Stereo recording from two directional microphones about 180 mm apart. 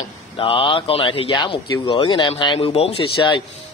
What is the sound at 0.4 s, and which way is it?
A man's voice, 30° left (ahead or behind).